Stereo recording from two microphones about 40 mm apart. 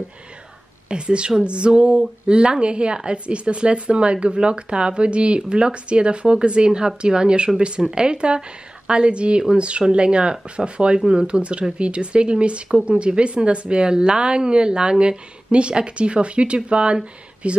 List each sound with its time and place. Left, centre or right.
0.8 s speech: right